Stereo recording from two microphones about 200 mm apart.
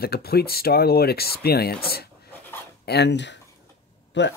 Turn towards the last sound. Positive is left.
turn(degrees=60)  # may be behind; listen again after turning